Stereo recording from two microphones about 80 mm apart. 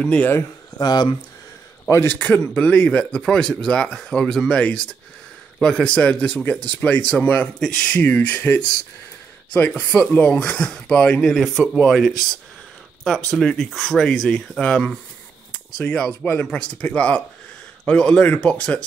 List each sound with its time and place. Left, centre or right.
0.0 s speech: centre
0.7 s speech: left
1.9 s speech: left
2.1 s speech: centre
9.7 s speech: centre
13.3 s speech: centre